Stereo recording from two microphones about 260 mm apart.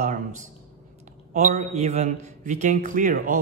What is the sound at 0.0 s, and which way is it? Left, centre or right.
A man's voice, right.